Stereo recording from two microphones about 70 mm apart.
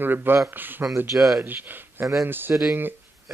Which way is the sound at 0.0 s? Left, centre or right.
Right.